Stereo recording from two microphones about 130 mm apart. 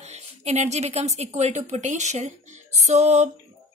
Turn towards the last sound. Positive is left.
turn(degrees=-60)  # may be behind; listen again after turning